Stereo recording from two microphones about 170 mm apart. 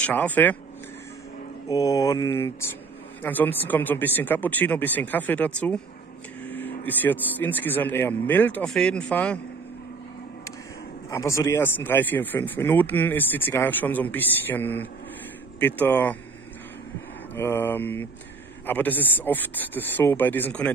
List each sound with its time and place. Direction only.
0.0 s speech: 10° left (ahead or behind)
1.7 s mantra: 20° left (ahead or behind)
3.2 s speech: 10° left (ahead or behind)
11.1 s speech: 15° left (ahead or behind)
17.4 s speech: 15° left (ahead or behind)